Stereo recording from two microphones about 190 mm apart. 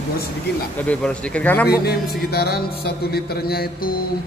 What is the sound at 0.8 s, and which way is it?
Speech, 5° left (ahead or behind).